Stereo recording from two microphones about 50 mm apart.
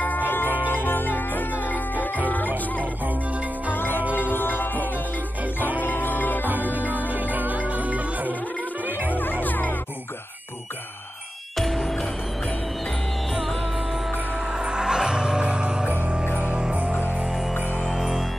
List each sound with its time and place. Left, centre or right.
0.0 s music: left
6.7 s music: right
9.1 s music: left
11.5 s music: centre
14.6 s music: centre
17.8 s music: centre